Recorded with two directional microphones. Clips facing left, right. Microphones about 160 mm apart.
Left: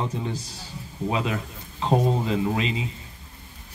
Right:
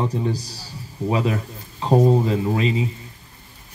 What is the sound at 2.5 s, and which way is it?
Speech, 35° right (ahead or behind).